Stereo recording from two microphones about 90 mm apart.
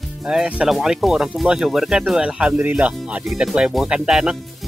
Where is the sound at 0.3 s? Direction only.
10° right (ahead or behind).